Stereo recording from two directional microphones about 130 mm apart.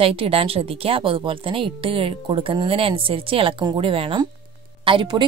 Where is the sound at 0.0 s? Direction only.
45° right (ahead or behind).